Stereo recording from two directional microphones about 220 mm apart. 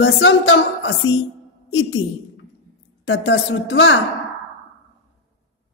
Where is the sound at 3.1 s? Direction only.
55° left (ahead or behind).